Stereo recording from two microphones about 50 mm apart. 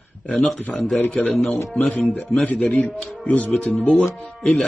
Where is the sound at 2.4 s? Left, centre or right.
Left.